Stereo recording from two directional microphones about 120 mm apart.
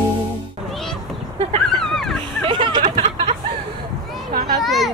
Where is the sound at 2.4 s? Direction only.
40° right (ahead or behind).